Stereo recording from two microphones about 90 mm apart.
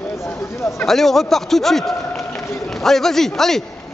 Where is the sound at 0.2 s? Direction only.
30° left (ahead or behind).